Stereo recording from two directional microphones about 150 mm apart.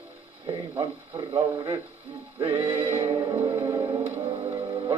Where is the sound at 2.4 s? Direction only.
35° right (ahead or behind).